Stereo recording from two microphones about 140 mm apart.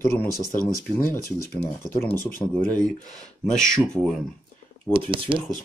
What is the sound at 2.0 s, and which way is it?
Speech, 10° left (ahead or behind).